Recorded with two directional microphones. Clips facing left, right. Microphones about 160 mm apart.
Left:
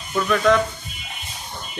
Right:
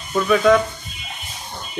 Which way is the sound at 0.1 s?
5° right (ahead or behind).